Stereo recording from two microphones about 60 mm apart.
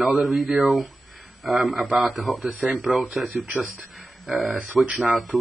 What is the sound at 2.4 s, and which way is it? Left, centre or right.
Speech, right.